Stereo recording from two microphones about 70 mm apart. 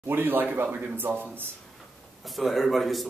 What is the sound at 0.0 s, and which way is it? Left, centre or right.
Speech, right.